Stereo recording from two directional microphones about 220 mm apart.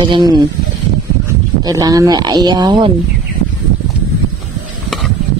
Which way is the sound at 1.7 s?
15° right (ahead or behind).